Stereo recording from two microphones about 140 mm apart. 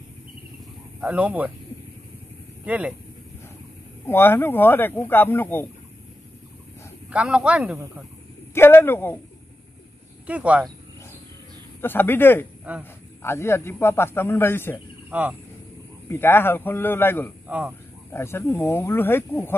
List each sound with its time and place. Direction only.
1.0 s speech: 10° right (ahead or behind)
2.6 s speech: 10° right (ahead or behind)
4.0 s speech: 15° left (ahead or behind)
7.1 s speech: 10° right (ahead or behind)
8.5 s speech: 15° left (ahead or behind)
10.2 s speech: 10° right (ahead or behind)
11.8 s speech: 15° left (ahead or behind)
15.0 s speech: 10° right (ahead or behind)
16.1 s speech: 15° left (ahead or behind)
17.5 s speech: 10° right (ahead or behind)
18.1 s speech: 20° left (ahead or behind)